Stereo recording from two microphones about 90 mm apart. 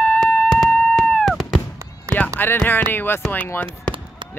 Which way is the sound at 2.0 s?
15° left (ahead or behind).